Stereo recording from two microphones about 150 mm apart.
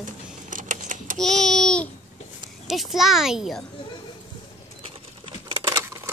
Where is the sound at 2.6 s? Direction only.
Centre (ahead or behind).